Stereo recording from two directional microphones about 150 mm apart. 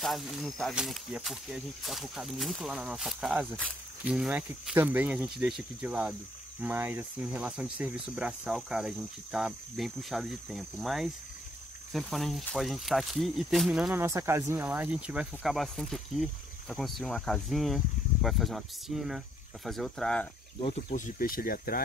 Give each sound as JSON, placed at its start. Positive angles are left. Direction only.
{"t": 0.0, "sound": "speech", "side_deg": 0}
{"t": 14.0, "sound": "speech", "side_deg": -20}
{"t": 20.9, "sound": "speech", "side_deg": 65}